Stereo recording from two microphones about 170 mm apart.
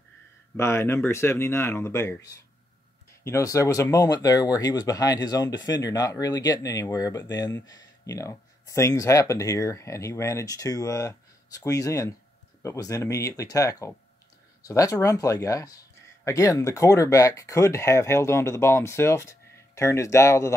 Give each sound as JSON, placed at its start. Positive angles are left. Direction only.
{"t": 0.6, "sound": "speech", "side_deg": 15}